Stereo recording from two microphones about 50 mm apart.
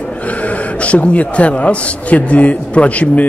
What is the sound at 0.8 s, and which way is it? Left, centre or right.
A man's voice, left.